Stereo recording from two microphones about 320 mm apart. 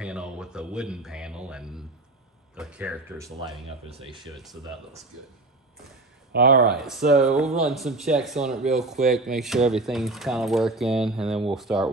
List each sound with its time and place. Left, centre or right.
0.0 s speech: centre
3.6 s speech: centre
6.3 s speech: right
6.7 s speech: centre